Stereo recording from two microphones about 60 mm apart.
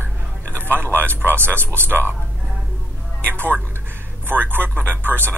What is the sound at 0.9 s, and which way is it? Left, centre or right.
Speech, right.